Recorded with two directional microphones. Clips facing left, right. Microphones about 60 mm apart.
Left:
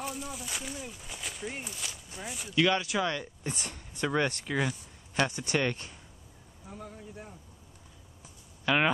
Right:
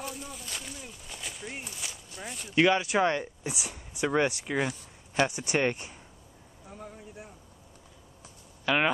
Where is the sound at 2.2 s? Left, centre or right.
Centre.